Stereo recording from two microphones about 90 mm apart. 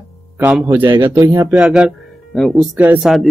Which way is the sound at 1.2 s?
30° right (ahead or behind).